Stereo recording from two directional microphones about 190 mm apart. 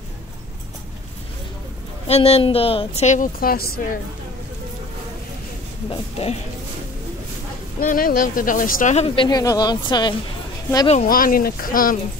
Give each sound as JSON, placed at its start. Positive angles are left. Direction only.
{"t": 2.0, "sound": "a woman's voice", "side_deg": 30}
{"t": 5.9, "sound": "a woman's voice", "side_deg": 30}
{"t": 7.8, "sound": "speech", "side_deg": 45}
{"t": 9.1, "sound": "speech", "side_deg": 25}
{"t": 10.9, "sound": "speech", "side_deg": 40}